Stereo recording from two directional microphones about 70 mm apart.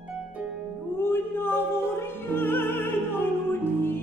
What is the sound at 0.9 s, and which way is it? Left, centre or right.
Opera, left.